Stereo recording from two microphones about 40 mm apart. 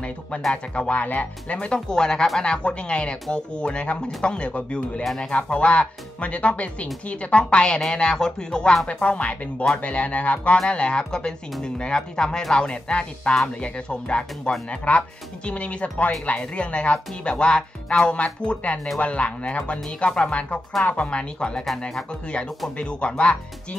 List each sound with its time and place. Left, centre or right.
0.7 s speech: left
1.7 s speech: centre
22.8 s speech: left